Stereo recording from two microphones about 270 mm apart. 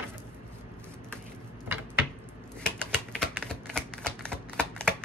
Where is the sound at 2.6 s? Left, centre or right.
Centre.